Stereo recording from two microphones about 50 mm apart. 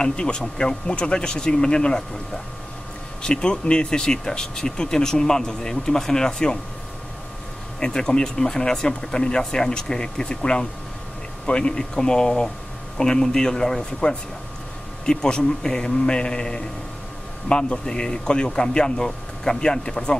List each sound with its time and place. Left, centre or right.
0.0 s speech: centre
7.8 s speech: centre